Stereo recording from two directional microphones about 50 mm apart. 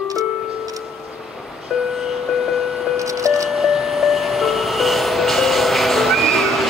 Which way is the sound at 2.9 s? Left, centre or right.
Right.